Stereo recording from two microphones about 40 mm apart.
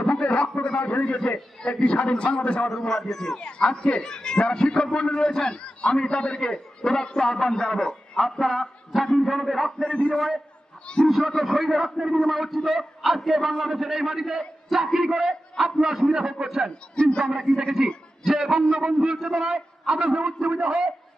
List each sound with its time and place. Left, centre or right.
0.1 s a man's voice: left
2.7 s a man's voice: centre
3.2 s a man's voice: left; by 9.7 s centre
9.8 s a man's voice: left
10.1 s a man's voice: centre
17.0 s a man's voice: centre
17.8 s a man's voice: centre